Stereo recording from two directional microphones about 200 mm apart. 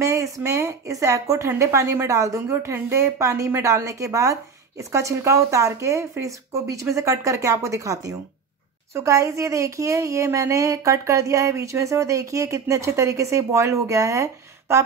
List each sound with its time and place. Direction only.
0.0 s speech: 15° right (ahead or behind)